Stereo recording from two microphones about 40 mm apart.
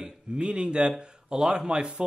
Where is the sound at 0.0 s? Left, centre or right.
Right.